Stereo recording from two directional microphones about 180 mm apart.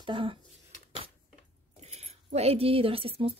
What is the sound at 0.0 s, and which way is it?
Speech, 30° right (ahead or behind).